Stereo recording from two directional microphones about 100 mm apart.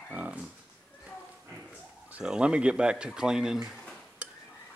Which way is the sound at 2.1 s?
10° right (ahead or behind).